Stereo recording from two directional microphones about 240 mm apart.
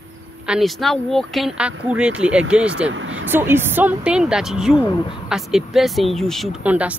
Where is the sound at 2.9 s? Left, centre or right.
Right.